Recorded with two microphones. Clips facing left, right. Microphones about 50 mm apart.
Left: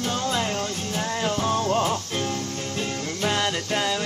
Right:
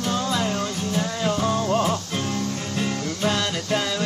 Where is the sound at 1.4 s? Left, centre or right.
Centre.